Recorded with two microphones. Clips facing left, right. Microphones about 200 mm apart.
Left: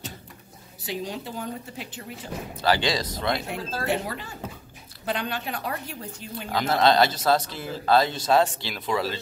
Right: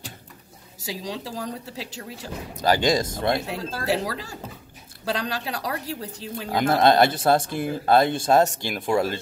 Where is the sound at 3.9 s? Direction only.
90° right.